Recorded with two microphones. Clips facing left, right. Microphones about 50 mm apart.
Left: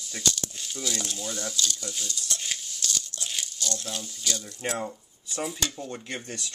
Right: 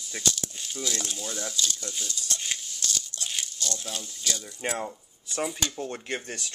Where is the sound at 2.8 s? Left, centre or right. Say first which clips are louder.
Even; centre.